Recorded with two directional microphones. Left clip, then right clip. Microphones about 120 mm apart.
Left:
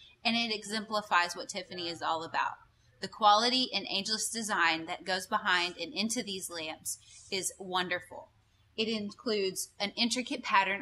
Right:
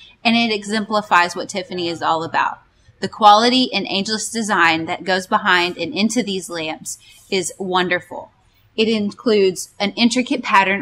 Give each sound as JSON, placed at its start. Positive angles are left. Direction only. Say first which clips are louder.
{"t": 0.0, "sound": "a woman's voice", "louder": "right 14 dB", "side_deg": 25}